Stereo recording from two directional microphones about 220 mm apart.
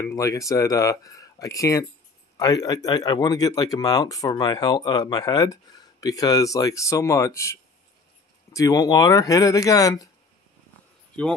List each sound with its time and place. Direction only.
0.0 s speech: 15° left (ahead or behind)
8.5 s speech: 15° left (ahead or behind)